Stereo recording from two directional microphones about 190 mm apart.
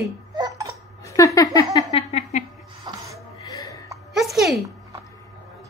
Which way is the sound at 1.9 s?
35° left (ahead or behind).